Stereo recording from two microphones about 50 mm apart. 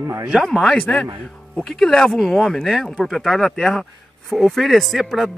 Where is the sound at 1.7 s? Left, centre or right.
Centre.